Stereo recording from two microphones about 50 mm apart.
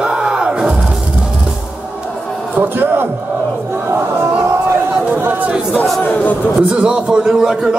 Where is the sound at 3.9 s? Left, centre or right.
Right.